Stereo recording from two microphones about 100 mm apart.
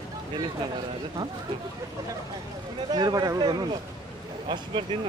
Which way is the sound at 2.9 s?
40° right (ahead or behind).